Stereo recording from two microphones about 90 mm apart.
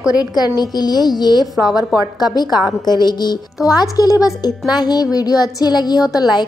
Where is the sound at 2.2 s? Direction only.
50° left (ahead or behind).